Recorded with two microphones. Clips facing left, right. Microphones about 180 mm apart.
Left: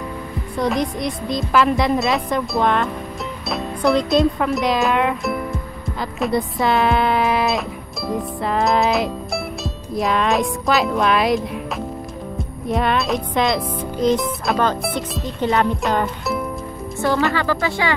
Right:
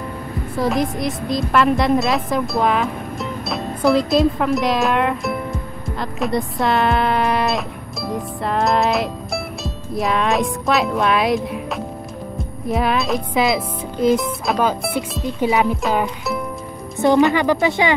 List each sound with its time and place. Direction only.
0.6 s speech: centre (ahead or behind)
8.1 s music: centre (ahead or behind)
12.6 s speech: centre (ahead or behind)
17.0 s speech: 20° right (ahead or behind)